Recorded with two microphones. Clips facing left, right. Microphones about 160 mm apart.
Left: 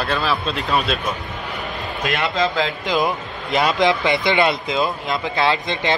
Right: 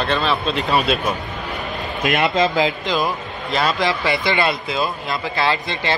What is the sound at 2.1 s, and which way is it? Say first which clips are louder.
Speech: right 3 dB; 20° right (ahead or behind).